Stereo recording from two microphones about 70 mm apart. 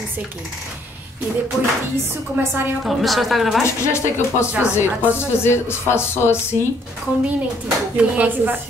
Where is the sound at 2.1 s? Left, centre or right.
Right.